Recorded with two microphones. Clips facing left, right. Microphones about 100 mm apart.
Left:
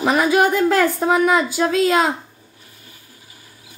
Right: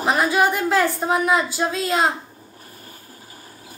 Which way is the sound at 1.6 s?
90° left.